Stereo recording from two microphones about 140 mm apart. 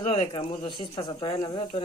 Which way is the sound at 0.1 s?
30° left (ahead or behind).